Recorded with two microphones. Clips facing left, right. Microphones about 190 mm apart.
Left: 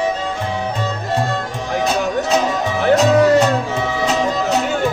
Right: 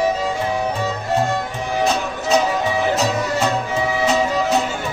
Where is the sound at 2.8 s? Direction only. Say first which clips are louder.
Left 12 dB; 65° left (ahead or behind).